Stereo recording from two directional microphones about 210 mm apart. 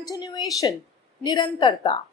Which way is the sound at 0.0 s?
15° left (ahead or behind).